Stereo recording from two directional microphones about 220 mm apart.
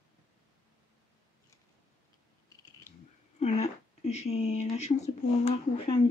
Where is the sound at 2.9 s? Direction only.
10° left (ahead or behind).